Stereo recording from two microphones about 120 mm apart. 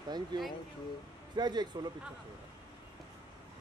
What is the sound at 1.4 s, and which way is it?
Speech, 35° right (ahead or behind).